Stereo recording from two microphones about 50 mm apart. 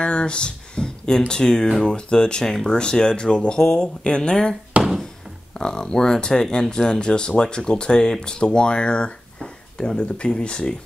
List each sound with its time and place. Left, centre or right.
0.0 s a sound: left
1.3 s speech: centre
5.6 s speech: centre